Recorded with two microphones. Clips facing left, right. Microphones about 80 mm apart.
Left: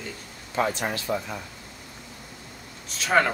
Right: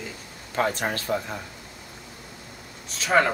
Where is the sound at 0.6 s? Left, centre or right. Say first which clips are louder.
Right 1 dB; right.